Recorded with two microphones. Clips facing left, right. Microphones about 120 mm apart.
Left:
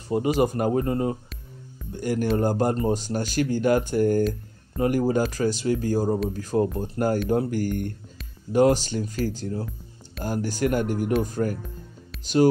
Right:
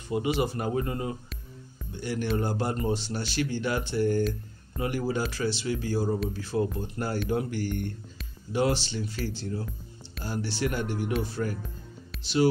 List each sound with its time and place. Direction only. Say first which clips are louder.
0.4 s speech: left 6 dB; 45° left (ahead or behind)